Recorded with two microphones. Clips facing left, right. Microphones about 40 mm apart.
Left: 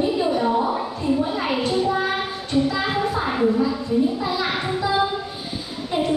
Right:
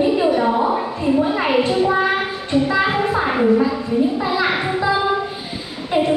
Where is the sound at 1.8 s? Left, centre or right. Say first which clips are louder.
Right 5 dB; right.